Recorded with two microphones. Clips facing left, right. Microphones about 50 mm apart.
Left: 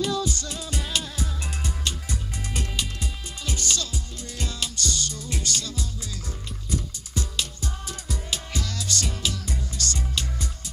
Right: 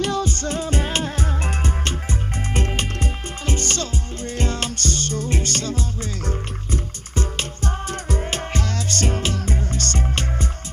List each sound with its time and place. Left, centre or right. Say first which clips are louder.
0.0 s music: right 4 dB; right